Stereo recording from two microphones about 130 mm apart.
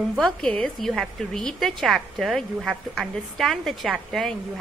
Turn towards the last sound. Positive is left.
turn(degrees=0)  # may be behind; listen again after turning